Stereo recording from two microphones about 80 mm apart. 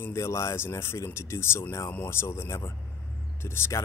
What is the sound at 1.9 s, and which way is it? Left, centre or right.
Speech, left.